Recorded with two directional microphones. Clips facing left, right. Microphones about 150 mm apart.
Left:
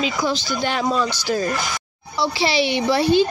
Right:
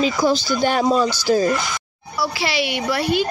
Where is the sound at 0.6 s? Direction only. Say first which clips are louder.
Right 5 dB; 45° right (ahead or behind).